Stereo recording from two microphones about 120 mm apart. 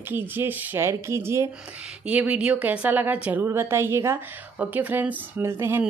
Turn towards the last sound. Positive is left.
turn(degrees=-20)  # may be behind; listen again after turning